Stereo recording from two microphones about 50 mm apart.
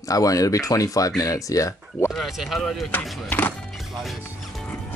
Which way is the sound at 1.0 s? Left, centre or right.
Left.